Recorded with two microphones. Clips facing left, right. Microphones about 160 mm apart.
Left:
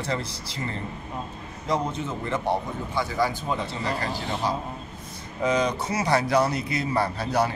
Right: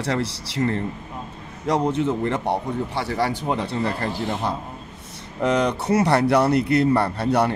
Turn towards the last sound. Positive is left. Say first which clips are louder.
# right 4 dB
turn(degrees=-65)  # may be behind; listen again after turning